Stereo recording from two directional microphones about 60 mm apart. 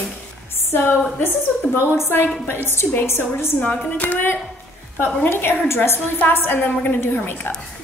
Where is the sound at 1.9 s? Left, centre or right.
Left.